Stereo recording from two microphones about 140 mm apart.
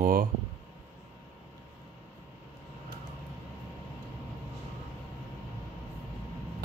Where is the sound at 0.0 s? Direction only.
90° right.